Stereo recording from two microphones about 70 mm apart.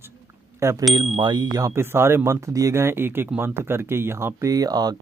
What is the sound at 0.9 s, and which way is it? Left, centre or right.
Speech, right.